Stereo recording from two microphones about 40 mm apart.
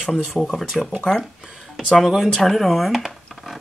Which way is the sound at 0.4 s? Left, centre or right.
Centre.